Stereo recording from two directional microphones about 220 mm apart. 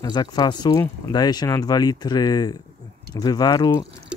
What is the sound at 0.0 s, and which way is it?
Speech, 20° left (ahead or behind).